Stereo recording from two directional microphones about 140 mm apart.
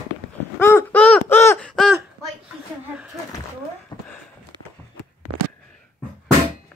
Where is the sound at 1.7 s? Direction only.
Centre (ahead or behind).